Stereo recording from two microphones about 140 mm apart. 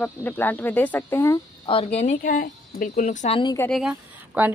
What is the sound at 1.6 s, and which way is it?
Speech, 45° left (ahead or behind).